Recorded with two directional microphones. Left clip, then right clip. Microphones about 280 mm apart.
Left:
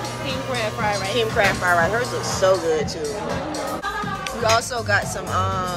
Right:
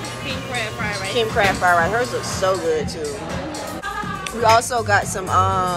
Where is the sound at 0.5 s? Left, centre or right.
Left.